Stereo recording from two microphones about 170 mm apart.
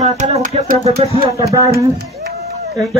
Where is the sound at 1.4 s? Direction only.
20° right (ahead or behind).